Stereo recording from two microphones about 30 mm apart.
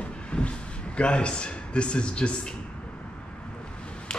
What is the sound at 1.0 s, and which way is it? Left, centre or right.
A man's voice, left.